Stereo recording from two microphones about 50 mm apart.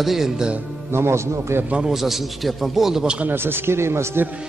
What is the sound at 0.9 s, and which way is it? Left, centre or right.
Speech, right.